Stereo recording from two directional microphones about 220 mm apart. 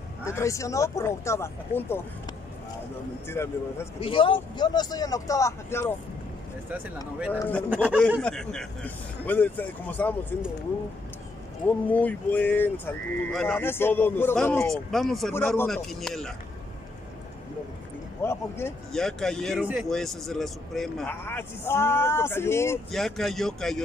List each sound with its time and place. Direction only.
0.2 s speech: 15° left (ahead or behind)
3.3 s speech: 10° left (ahead or behind)
4.0 s speech: 25° left (ahead or behind)
7.3 s speech: 10° left (ahead or behind)
7.7 s speech: 5° right (ahead or behind)
11.6 s speech: 5° left (ahead or behind)
18.2 s speech: 10° left (ahead or behind)